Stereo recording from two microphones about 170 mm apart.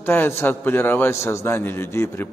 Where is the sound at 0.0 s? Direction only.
10° left (ahead or behind).